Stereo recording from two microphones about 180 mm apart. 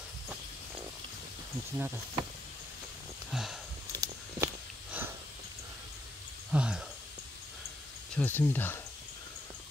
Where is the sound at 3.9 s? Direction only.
20° right (ahead or behind).